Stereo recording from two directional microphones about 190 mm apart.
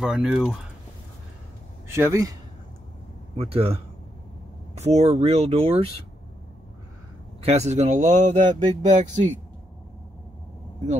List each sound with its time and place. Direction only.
0.0 s speech: centre (ahead or behind)
1.9 s a man's voice: 15° right (ahead or behind)
3.3 s speech: 30° right (ahead or behind)
4.7 s speech: 35° right (ahead or behind)
7.4 s speech: 35° right (ahead or behind)